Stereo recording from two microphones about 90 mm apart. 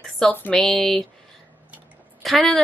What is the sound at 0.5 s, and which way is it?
Speech, 5° left (ahead or behind).